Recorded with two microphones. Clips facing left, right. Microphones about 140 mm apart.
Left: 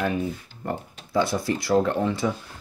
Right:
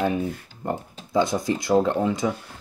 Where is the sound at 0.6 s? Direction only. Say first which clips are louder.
Right 2 dB; 15° right (ahead or behind).